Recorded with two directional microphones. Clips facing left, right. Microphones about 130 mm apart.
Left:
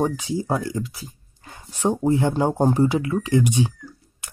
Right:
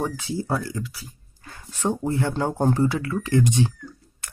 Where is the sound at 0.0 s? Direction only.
15° left (ahead or behind).